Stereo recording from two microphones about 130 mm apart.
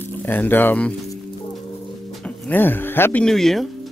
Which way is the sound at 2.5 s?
15° left (ahead or behind).